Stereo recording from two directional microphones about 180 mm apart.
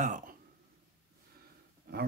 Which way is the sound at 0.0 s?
45° right (ahead or behind).